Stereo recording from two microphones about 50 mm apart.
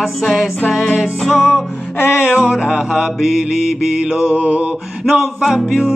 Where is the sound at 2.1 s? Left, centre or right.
Centre.